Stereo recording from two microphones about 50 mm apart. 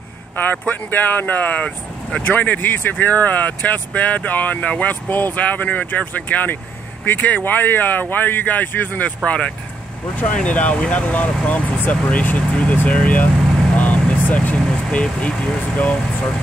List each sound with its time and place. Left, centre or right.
0.4 s speech: left
9.2 s speech: left
13.7 s vehicle: left